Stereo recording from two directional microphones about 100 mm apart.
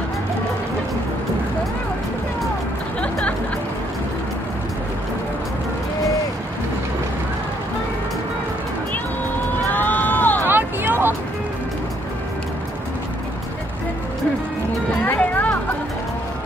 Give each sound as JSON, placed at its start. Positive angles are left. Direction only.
{"t": 3.0, "sound": "music", "side_deg": 10}
{"t": 9.7, "sound": "run", "side_deg": 20}
{"t": 10.4, "sound": "hubbub", "side_deg": -20}
{"t": 15.1, "sound": "music", "side_deg": 15}